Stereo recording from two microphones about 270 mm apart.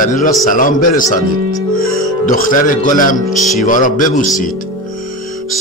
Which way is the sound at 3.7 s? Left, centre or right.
Left.